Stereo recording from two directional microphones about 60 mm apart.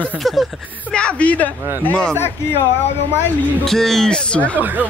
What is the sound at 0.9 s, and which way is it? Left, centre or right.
Speech, centre.